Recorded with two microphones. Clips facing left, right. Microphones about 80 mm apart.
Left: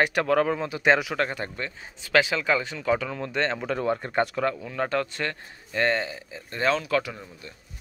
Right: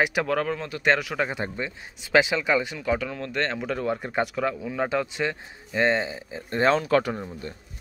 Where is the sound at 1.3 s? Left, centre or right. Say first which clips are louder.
Right 2 dB; centre.